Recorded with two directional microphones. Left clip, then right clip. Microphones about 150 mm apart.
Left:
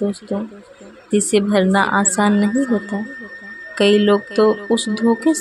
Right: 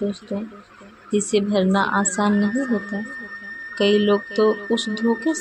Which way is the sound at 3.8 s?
25° left (ahead or behind).